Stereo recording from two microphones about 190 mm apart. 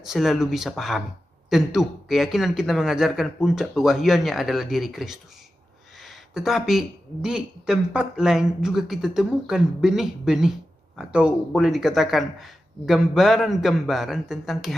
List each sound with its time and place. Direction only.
0.0 s speech: centre (ahead or behind)